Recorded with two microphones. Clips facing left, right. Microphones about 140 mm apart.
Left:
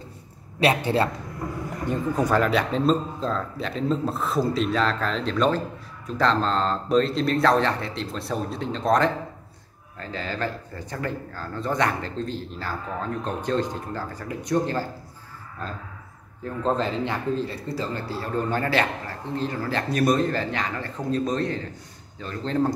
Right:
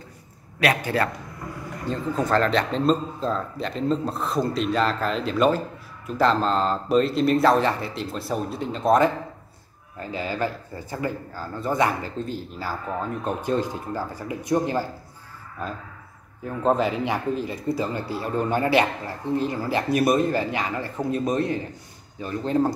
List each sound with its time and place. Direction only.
0.6 s a man's voice: 30° left (ahead or behind)
1.9 s speech: 15° left (ahead or behind); by 22.7 s 10° right (ahead or behind)